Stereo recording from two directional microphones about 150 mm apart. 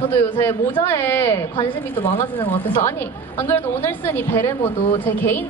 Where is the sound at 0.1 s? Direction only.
15° left (ahead or behind).